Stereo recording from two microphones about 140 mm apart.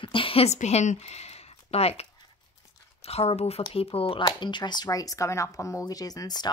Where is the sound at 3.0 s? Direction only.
45° left (ahead or behind).